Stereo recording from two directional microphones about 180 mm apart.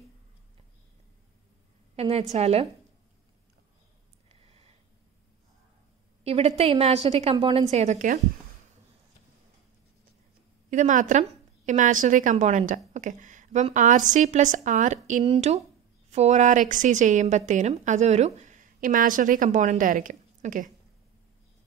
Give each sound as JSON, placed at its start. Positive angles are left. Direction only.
{"t": 2.0, "sound": "a woman's voice", "side_deg": -35}
{"t": 4.3, "sound": "a sound", "side_deg": -35}
{"t": 6.2, "sound": "a woman's voice", "side_deg": -35}
{"t": 10.7, "sound": "a woman's voice", "side_deg": -45}